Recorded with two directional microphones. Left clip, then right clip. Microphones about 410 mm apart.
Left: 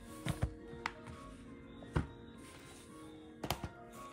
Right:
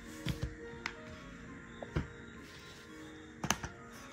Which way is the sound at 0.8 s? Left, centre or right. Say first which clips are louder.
Left 1 dB; left.